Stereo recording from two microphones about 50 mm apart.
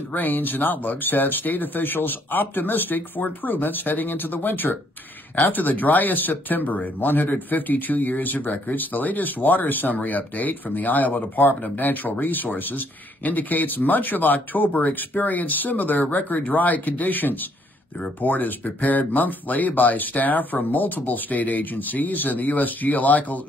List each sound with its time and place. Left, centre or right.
0.1 s speech: left